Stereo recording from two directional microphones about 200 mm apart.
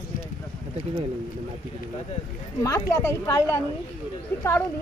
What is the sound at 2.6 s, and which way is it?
Speech, 15° left (ahead or behind).